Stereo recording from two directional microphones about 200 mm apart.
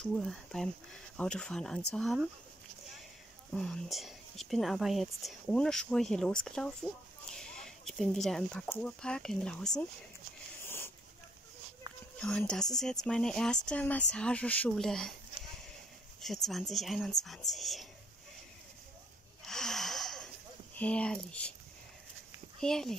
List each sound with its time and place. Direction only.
0.0 s speech: centre (ahead or behind)
3.5 s speech: centre (ahead or behind)
10.6 s a sound: 10° left (ahead or behind)
11.9 s a sound: 20° right (ahead or behind)
12.2 s speech: 5° left (ahead or behind)
16.2 s speech: centre (ahead or behind)
19.4 s snort: centre (ahead or behind)
20.7 s speech: 5° left (ahead or behind)
22.6 s speech: 5° left (ahead or behind)